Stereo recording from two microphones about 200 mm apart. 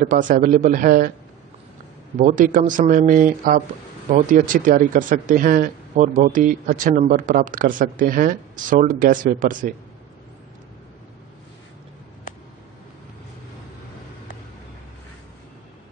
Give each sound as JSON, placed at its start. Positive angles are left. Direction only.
{"t": 0.0, "sound": "speech", "side_deg": -40}
{"t": 2.1, "sound": "a man's voice", "side_deg": -40}